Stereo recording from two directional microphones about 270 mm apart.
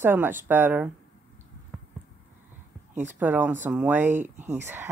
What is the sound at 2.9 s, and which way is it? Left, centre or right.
Speech, right.